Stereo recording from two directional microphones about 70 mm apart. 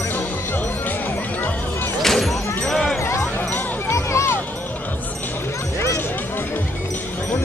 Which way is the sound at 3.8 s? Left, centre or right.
Left.